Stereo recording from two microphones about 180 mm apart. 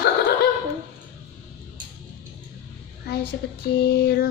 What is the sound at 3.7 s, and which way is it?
Speech, 60° left (ahead or behind).